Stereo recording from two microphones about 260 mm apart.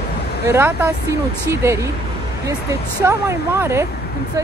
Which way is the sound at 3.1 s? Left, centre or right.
Centre.